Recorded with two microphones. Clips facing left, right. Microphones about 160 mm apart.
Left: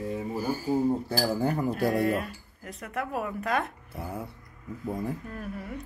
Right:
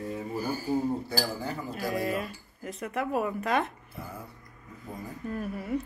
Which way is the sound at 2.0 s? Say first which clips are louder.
Left 3 dB; 5° right (ahead or behind).